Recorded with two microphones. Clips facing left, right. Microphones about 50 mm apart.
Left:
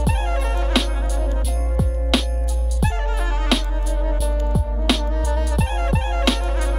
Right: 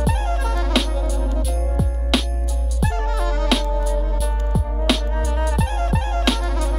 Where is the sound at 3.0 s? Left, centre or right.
Left.